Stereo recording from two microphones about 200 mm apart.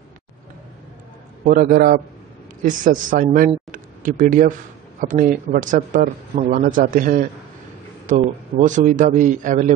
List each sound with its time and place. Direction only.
1.4 s a man's voice: 45° right (ahead or behind)